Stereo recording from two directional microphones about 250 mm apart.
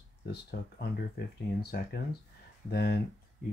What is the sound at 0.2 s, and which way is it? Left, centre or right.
Speech, left.